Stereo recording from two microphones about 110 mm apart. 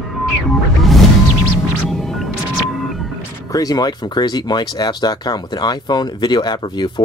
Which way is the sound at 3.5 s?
35° left (ahead or behind).